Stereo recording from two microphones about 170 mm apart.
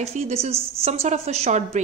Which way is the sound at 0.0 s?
35° right (ahead or behind).